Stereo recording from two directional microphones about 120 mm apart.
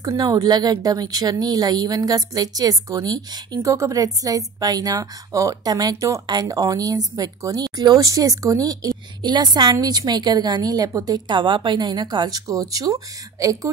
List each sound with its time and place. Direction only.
0.0 s speech: 30° right (ahead or behind)